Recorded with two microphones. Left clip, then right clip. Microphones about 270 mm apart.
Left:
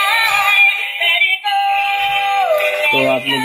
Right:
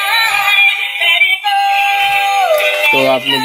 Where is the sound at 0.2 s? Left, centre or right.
Centre.